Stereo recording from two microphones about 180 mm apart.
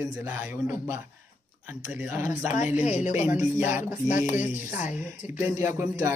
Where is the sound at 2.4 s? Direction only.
40° left (ahead or behind).